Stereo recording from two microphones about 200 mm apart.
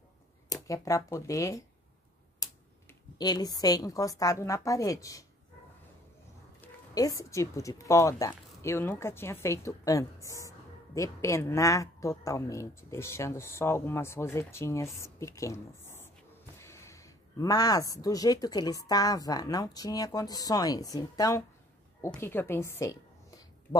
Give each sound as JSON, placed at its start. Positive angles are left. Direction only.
{"t": 0.5, "sound": "speech", "side_deg": 15}
{"t": 6.6, "sound": "speech", "side_deg": 15}